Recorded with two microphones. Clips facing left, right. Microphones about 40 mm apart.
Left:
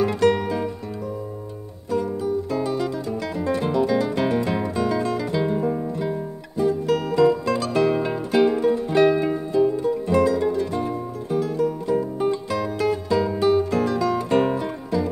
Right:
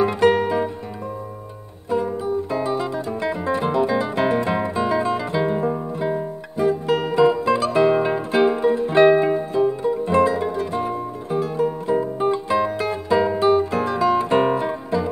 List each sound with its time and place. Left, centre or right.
0.0 s music: right
1.9 s music: right